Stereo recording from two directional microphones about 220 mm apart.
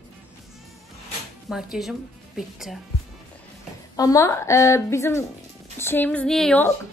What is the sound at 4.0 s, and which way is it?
A woman's voice, 15° left (ahead or behind).